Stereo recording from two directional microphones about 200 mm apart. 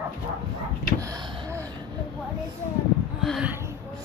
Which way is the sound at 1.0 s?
20° right (ahead or behind).